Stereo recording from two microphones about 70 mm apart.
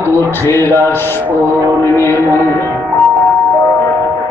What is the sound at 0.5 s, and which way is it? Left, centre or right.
Music, left.